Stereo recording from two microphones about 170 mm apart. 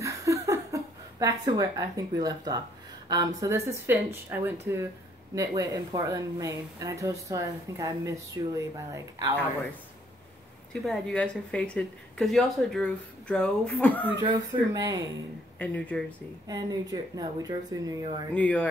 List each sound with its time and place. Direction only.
0.0 s laughter: 20° right (ahead or behind)
1.2 s speech: 20° right (ahead or behind)
10.7 s a woman's voice: 5° left (ahead or behind)
14.2 s speech: 25° right (ahead or behind)
15.6 s speech: 10° left (ahead or behind)
16.4 s speech: 25° right (ahead or behind)
18.3 s speech: 10° left (ahead or behind)